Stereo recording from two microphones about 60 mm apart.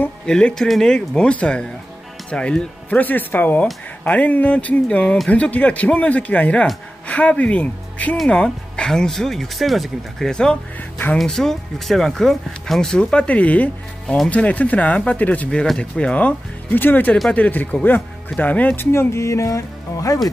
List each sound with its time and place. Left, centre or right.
0.3 s speech: centre
3.0 s speech: left
8.8 s speech: centre
13.0 s speech: centre
14.0 s speech: centre
14.3 s speech: left
16.7 s speech: left
18.8 s speech: left